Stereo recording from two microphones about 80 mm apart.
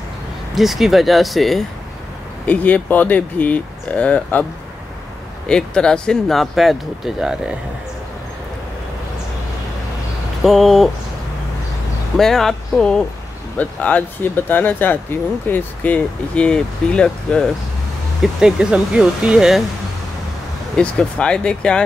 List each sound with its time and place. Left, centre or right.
0.6 s speech: centre
2.4 s speech: centre
5.5 s speech: centre
10.4 s speech: centre
12.2 s speech: centre
13.6 s speech: centre
18.2 s speech: centre
20.7 s speech: centre